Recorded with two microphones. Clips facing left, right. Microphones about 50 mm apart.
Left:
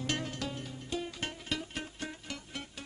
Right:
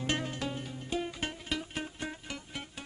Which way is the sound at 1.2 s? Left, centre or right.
Centre.